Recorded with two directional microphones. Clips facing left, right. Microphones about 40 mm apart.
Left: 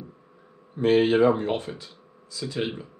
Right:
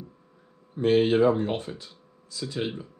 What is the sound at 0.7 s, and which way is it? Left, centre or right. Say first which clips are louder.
Speech: left 1 dB; left.